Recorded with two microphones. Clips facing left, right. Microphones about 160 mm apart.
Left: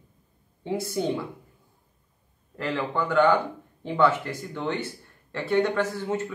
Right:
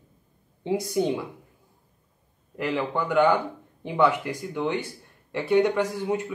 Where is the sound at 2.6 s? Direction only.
15° right (ahead or behind).